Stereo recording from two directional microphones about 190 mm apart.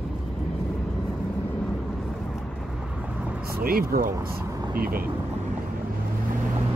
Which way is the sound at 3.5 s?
50° right (ahead or behind).